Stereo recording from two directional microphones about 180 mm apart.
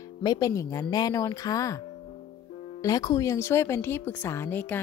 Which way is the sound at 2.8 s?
20° left (ahead or behind).